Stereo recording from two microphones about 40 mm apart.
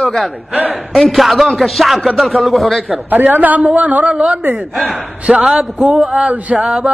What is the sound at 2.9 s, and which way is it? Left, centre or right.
A man's voice, right.